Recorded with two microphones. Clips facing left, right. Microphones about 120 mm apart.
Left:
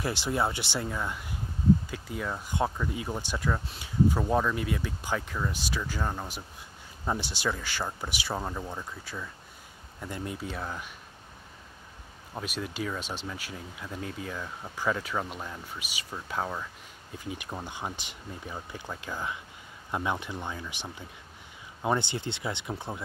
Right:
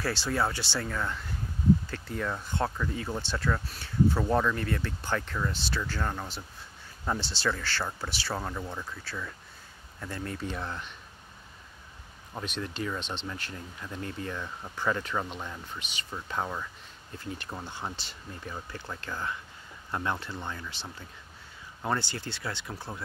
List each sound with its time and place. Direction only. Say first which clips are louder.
0.0 s speech: even; 20° left (ahead or behind)
12.4 s speech: even; 5° left (ahead or behind)